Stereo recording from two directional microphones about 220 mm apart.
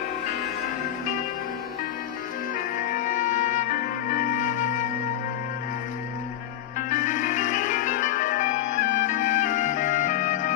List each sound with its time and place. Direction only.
2.9 s music: 35° left (ahead or behind)
6.9 s music: 35° left (ahead or behind)